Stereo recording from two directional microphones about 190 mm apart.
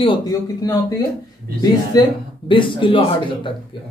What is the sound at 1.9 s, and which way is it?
Speech, 25° left (ahead or behind).